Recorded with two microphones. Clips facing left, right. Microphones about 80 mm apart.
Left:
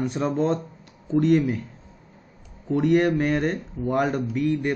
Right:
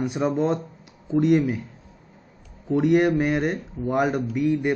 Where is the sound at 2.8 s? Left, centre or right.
Centre.